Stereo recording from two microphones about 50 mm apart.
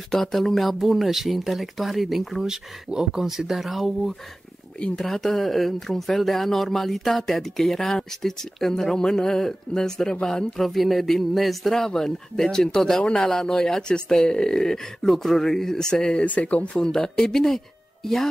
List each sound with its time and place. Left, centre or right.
0.1 s speech: centre
4.7 s speech: centre
5.0 s speech: centre
10.7 s speech: centre; by 16.7 s left
16.7 s speech: centre